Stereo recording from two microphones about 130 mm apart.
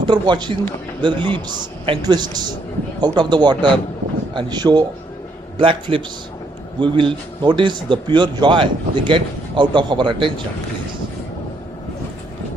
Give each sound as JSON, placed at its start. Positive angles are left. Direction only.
{"t": 0.0, "sound": "a man's voice", "side_deg": -35}